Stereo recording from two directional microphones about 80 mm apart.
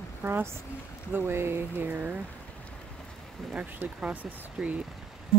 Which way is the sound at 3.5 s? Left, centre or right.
Centre.